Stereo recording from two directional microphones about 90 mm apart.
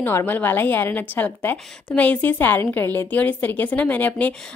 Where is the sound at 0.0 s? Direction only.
25° left (ahead or behind).